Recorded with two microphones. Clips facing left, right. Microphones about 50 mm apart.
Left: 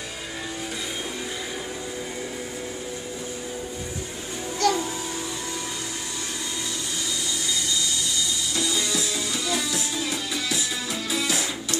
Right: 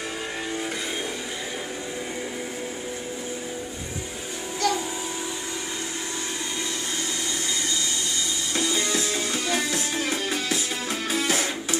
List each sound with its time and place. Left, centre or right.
4.6 s music: centre
8.5 s music: right